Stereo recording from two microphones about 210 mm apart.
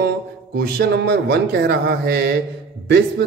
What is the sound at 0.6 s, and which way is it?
A man's voice, 50° right (ahead or behind).